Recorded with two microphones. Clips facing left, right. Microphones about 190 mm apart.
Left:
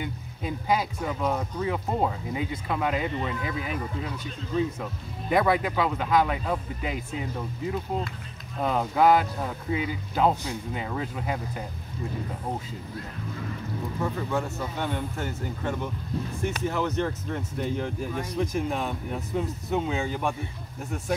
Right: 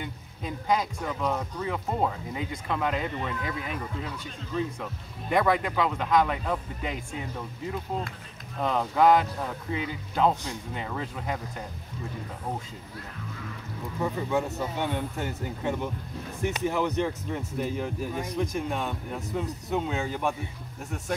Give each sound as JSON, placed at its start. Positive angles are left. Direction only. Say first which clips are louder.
{"t": 0.0, "sound": "speech", "louder": "left 3 dB", "side_deg": 5}
{"t": 5.3, "sound": "speech", "louder": "left 1 dB", "side_deg": 5}
{"t": 14.0, "sound": "speech", "louder": "right 2 dB", "side_deg": -20}